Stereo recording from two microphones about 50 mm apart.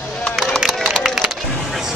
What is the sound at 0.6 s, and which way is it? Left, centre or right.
Run, centre.